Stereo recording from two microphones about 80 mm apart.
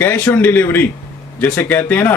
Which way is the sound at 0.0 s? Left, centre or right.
Left.